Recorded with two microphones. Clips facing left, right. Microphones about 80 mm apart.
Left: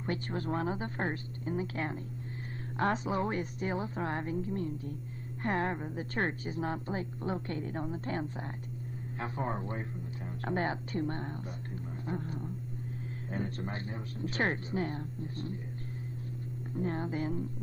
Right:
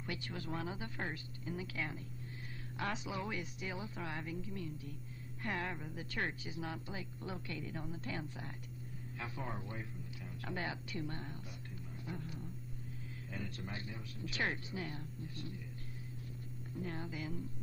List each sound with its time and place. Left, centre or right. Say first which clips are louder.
0.0 s a woman's voice: left 9 dB; left
12.1 s a sound: left 8 dB; left
13.3 s a woman's voice: left 8 dB; left
16.7 s a woman's voice: left 9 dB; left